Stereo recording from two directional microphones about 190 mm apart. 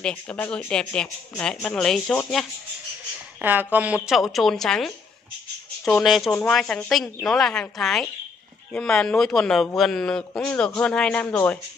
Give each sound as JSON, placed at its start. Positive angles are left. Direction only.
{"t": 0.0, "sound": "speech", "side_deg": 10}
{"t": 3.3, "sound": "speech", "side_deg": -10}